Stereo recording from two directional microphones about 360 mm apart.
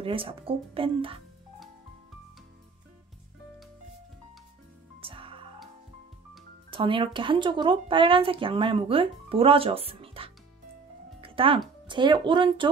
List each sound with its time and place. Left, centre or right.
0.0 s speech: centre
5.0 s music: centre
6.7 s speech: centre
11.1 s music: centre
11.9 s speech: centre